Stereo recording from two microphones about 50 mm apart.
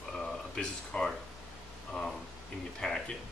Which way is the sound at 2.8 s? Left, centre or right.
Centre.